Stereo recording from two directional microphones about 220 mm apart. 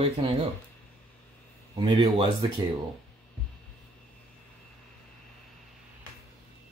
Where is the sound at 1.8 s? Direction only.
25° right (ahead or behind).